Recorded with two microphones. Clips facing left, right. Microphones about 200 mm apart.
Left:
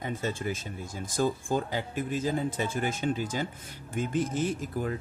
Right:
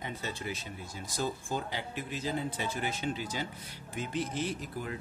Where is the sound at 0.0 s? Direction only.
50° left (ahead or behind).